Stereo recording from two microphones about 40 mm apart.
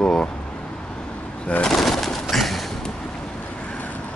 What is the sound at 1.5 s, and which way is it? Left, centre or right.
Speech, left.